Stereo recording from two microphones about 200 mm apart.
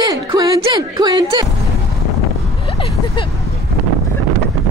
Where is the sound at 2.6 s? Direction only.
30° left (ahead or behind).